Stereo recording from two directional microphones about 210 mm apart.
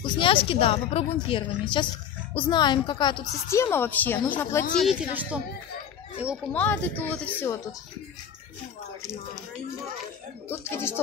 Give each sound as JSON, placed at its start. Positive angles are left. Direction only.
{"t": 0.0, "sound": "a woman's voice", "side_deg": 25}
{"t": 4.7, "sound": "a woman's voice", "side_deg": 0}
{"t": 6.5, "sound": "a woman's voice", "side_deg": 10}
{"t": 10.6, "sound": "a woman's voice", "side_deg": 10}